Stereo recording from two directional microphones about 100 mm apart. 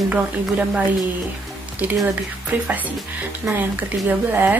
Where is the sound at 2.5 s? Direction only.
20° right (ahead or behind).